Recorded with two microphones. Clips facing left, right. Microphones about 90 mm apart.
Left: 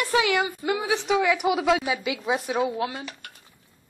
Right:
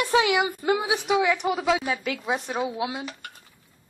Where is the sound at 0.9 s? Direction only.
10° right (ahead or behind).